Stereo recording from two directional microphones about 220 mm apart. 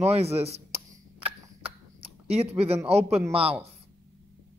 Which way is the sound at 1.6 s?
25° right (ahead or behind).